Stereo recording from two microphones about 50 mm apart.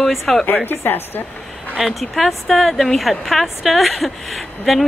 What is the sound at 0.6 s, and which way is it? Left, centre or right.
Speech, left.